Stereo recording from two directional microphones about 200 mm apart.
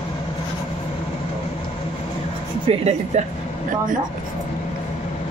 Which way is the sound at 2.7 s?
30° right (ahead or behind).